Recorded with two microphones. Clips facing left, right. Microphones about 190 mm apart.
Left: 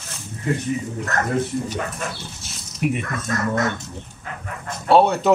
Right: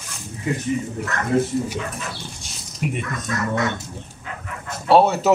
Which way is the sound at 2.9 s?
45° left (ahead or behind).